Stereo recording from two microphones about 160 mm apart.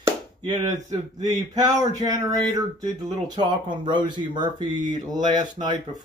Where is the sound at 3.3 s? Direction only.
30° right (ahead or behind).